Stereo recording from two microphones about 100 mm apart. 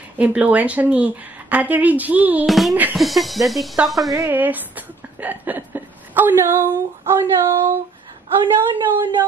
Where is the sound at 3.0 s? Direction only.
Centre (ahead or behind).